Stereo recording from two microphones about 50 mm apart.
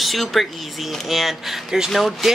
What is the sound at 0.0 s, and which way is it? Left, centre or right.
Speech, centre.